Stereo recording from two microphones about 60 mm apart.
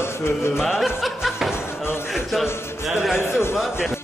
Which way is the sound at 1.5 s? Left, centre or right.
Left.